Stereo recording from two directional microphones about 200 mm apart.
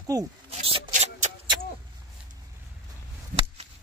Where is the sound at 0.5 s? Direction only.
30° right (ahead or behind).